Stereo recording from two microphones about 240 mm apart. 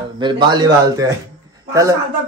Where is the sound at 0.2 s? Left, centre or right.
Centre.